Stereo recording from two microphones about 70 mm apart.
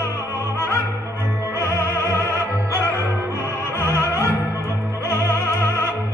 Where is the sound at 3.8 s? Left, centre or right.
Left.